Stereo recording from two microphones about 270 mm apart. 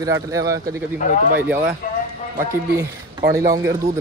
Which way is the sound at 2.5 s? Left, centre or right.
Centre.